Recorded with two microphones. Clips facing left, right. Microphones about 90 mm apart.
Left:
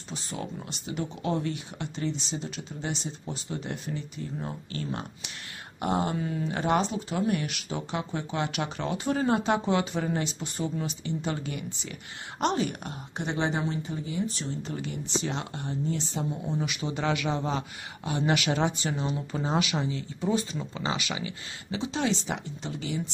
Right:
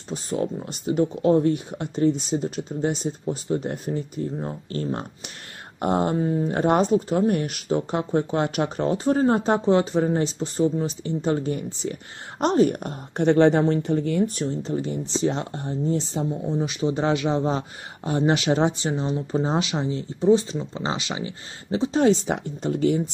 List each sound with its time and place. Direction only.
0.1 s speech: 45° right (ahead or behind)
13.2 s speech: 60° right (ahead or behind)
14.6 s speech: 35° right (ahead or behind)